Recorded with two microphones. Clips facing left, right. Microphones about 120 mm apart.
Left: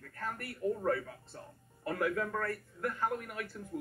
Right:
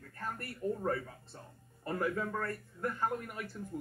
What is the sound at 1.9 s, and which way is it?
Speech, 30° right (ahead or behind).